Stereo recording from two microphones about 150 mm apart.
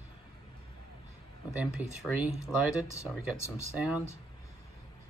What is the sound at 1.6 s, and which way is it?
Speech, 10° right (ahead or behind).